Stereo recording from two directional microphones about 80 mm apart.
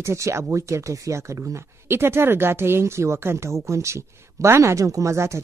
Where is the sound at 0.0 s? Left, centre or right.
Right.